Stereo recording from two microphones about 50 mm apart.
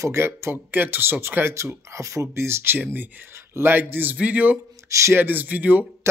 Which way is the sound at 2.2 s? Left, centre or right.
Right.